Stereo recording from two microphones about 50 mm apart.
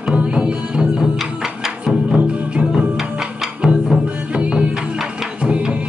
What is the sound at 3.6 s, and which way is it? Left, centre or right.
Music, centre.